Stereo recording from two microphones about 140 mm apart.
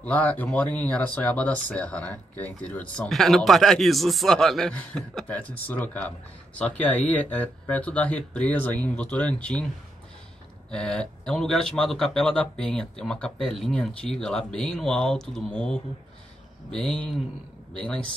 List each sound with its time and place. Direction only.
0.0 s speech: 10° left (ahead or behind)
10.7 s speech: 5° left (ahead or behind)
17.8 s speech: 5° left (ahead or behind)